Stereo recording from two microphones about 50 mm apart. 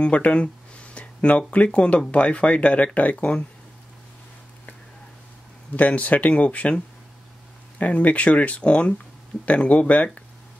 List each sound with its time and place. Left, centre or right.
0.0 s a sound: left
1.5 s speech: left
5.8 s speech: left
7.8 s speech: left